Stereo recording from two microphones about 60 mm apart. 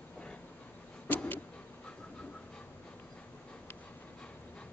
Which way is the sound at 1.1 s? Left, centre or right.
Left.